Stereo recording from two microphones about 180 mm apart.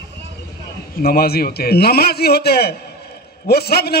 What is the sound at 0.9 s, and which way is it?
A man's voice, 60° left (ahead or behind).